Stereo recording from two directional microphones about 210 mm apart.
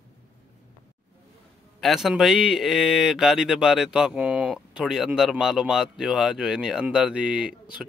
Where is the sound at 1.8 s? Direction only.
Centre (ahead or behind).